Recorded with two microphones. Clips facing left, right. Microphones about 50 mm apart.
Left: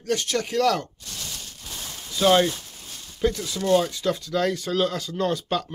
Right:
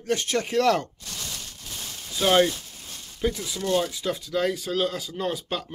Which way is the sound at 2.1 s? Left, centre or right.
Centre.